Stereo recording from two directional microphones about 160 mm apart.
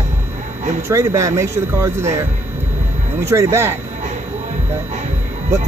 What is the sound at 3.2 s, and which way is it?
Speech, 15° right (ahead or behind).